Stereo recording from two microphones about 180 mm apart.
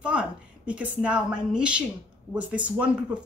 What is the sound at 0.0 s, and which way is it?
A woman's voice, 5° right (ahead or behind).